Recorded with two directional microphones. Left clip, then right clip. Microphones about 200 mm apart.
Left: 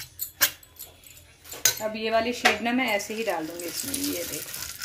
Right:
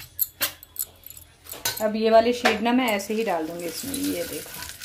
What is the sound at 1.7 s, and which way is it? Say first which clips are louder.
Cutlery: right 12 dB; 15° right (ahead or behind).